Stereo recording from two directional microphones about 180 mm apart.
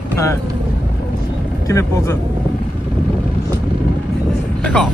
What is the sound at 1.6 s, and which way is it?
Speech, 15° left (ahead or behind).